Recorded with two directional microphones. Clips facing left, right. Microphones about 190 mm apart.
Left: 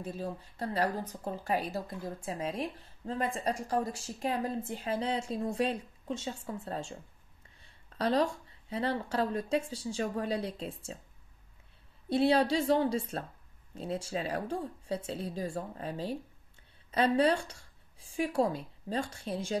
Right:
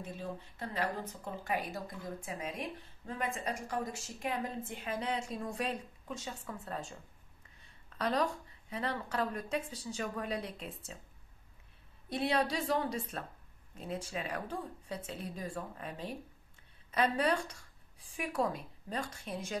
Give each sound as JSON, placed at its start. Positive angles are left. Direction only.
{"t": 0.0, "sound": "a woman's voice", "side_deg": 35}
{"t": 12.1, "sound": "a woman's voice", "side_deg": 30}